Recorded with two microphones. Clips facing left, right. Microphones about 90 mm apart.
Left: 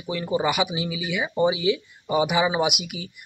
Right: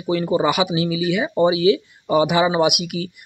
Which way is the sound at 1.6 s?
75° right (ahead or behind).